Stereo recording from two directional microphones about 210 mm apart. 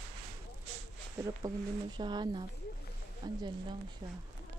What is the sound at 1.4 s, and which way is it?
Speech, 15° right (ahead or behind).